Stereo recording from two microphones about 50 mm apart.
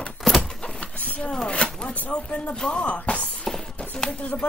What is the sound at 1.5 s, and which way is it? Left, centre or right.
Speech, left.